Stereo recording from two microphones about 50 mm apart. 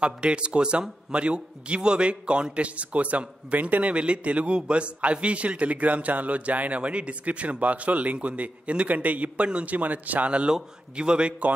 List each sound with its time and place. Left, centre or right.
0.0 s a man's voice: right